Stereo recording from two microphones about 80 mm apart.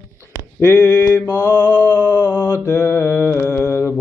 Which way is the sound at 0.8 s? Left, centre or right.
Left.